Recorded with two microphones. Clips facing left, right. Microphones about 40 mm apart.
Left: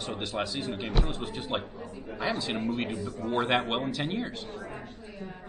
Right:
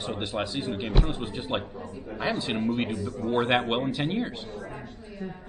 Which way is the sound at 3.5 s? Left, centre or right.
Centre.